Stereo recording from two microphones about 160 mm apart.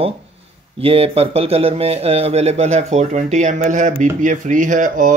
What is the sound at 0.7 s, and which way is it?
Speech, 35° right (ahead or behind).